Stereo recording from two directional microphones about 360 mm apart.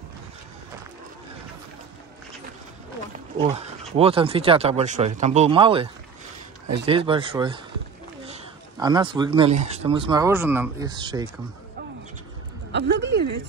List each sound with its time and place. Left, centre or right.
3.3 s speech: centre
6.9 s speech: centre
12.7 s speech: right